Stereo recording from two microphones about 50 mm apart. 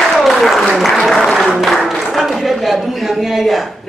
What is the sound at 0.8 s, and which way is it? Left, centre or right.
Speech, centre.